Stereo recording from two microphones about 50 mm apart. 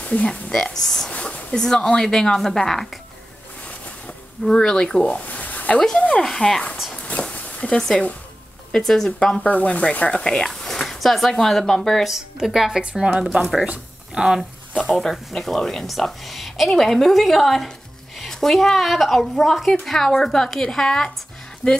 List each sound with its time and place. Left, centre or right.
0.0 s speech: left
0.3 s speech: centre
1.1 s speech: left; by 3.0 s centre
4.5 s speech: centre
5.0 s a sound: left
5.9 s speech: left
6.2 s speech: centre
6.9 s a sound: left
7.7 s speech: centre
9.4 s speech: left; by 12.1 s centre
12.1 s a woman's voice: centre
14.1 s a woman's voice: centre
14.9 s a woman's voice: centre